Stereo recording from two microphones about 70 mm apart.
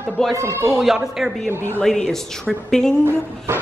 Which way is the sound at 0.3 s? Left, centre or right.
Right.